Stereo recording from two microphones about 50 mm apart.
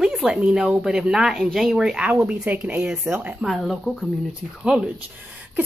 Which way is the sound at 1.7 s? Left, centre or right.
Centre.